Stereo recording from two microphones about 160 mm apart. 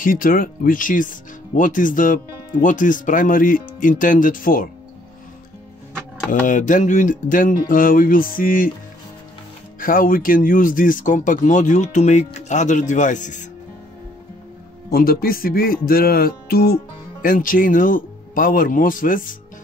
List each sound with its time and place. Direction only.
0.0 s speech: 60° left (ahead or behind)
6.4 s speech: 55° left (ahead or behind)
9.8 s speech: 60° left (ahead or behind)
14.9 s speech: 65° left (ahead or behind)